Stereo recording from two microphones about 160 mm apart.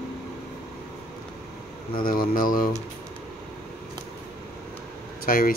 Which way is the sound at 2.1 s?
65° left (ahead or behind).